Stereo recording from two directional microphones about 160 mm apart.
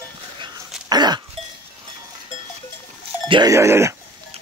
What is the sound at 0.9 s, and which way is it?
Goat, 25° right (ahead or behind).